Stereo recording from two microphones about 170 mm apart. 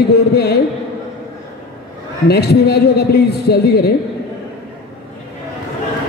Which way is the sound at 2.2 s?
70° left (ahead or behind).